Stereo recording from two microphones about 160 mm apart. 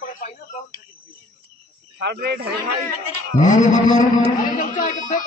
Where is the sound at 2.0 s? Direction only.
90° right.